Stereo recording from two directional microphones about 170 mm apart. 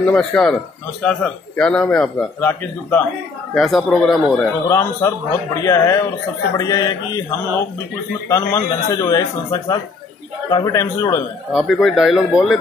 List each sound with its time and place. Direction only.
0.0 s speech: 10° left (ahead or behind)
1.6 s a man's voice: 5° left (ahead or behind)
4.6 s speech: 15° left (ahead or behind)
11.5 s a man's voice: centre (ahead or behind)